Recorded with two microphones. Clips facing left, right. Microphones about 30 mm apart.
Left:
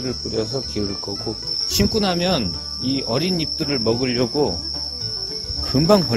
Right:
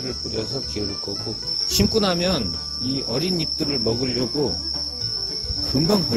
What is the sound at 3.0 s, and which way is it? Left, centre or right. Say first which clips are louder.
Speech: left 2 dB; left.